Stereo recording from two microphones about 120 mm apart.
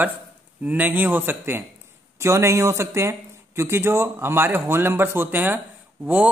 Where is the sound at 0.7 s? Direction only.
15° right (ahead or behind).